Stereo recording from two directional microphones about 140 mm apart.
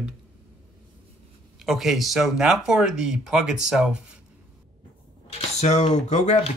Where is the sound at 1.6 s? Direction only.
Centre (ahead or behind).